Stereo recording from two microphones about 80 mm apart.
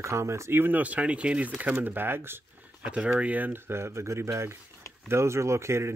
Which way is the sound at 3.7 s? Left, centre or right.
Right.